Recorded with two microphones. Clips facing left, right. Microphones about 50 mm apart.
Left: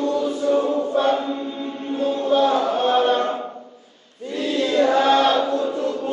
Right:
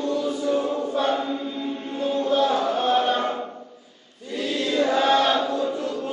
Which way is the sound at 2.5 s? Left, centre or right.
Centre.